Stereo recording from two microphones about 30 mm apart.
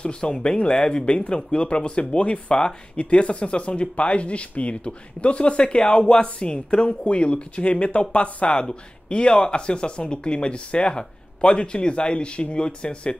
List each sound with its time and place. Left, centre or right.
0.0 s speech: left
6.2 s speech: left